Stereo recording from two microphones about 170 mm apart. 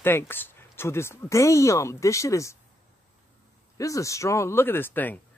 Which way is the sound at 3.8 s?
20° left (ahead or behind).